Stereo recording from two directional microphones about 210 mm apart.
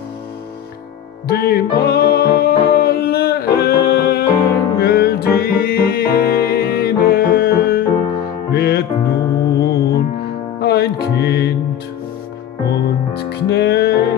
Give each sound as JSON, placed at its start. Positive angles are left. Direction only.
{"t": 1.2, "sound": "music", "side_deg": 45}
{"t": 12.6, "sound": "music", "side_deg": 50}